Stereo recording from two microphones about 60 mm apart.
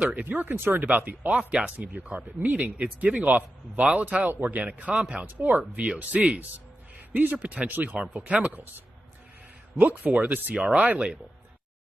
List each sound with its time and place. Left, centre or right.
0.0 s speech: right
0.4 s speech: right
9.8 s speech: right
10.5 s speech: centre